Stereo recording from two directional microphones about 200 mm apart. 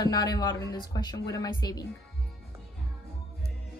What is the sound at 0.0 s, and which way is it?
Speech, 20° left (ahead or behind).